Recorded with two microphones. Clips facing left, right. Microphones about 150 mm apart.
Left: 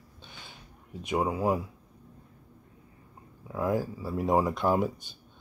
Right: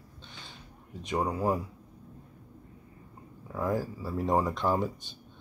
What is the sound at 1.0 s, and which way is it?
Speech, 5° left (ahead or behind).